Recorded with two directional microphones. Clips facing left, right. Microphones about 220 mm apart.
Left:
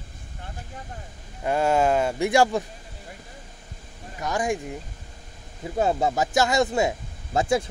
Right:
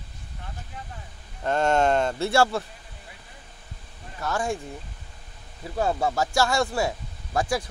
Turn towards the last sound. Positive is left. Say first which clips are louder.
# left 3 dB
turn(degrees=25)  # may be behind; listen again after turning